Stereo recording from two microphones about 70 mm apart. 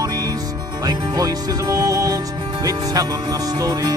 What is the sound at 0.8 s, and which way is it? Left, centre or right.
Music, right.